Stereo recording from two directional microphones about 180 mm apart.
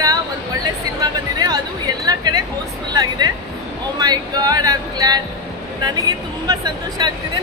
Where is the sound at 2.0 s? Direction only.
20° right (ahead or behind).